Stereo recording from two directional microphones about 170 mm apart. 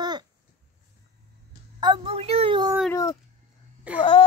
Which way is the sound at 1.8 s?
25° right (ahead or behind).